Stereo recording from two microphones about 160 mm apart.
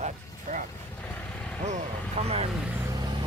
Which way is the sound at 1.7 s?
45° right (ahead or behind).